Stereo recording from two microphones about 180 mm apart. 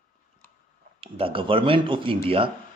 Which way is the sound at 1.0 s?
30° right (ahead or behind).